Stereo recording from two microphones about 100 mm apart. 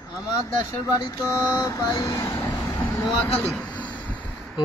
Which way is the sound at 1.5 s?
35° left (ahead or behind).